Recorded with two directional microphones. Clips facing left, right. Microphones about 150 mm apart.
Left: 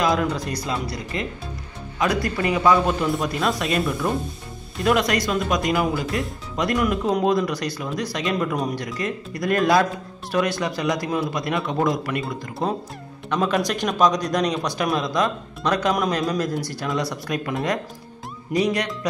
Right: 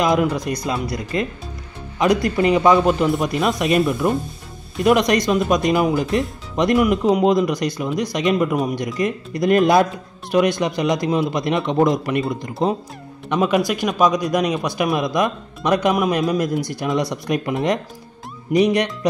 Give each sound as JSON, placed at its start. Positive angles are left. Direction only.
{"t": 0.0, "sound": "speech", "side_deg": -15}
{"t": 0.8, "sound": "speech", "side_deg": 25}
{"t": 2.0, "sound": "speech", "side_deg": -20}